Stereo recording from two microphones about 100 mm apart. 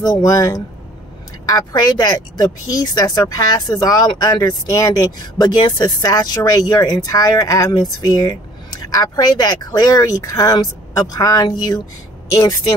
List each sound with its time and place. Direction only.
0.0 s speech: 35° left (ahead or behind)